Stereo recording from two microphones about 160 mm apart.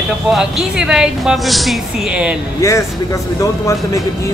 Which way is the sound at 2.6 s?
20° left (ahead or behind).